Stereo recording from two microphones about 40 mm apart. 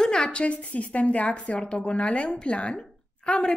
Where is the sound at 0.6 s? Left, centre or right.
Left.